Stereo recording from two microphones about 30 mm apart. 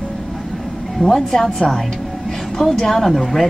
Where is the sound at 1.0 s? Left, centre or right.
Centre.